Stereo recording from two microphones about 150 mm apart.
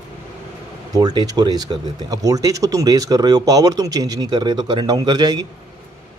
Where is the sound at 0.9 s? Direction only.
25° right (ahead or behind).